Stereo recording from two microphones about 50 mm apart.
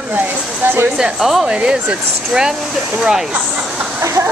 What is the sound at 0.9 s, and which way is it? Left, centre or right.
Speech, centre.